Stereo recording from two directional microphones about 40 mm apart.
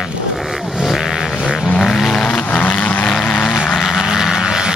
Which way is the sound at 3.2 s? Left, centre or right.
Left.